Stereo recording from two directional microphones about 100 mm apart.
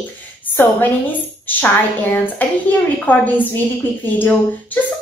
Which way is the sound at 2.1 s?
15° left (ahead or behind).